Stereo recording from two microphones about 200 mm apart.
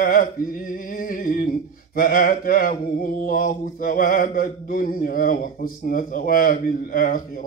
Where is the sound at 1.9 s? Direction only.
45° left (ahead or behind).